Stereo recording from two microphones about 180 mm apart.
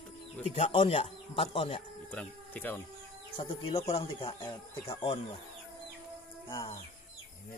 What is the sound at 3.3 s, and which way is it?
Speech, 35° left (ahead or behind).